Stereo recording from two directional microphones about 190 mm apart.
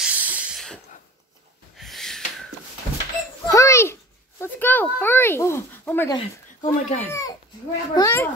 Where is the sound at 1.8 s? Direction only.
Centre (ahead or behind).